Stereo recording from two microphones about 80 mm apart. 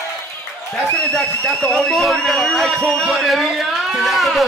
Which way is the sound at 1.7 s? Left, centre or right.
Centre.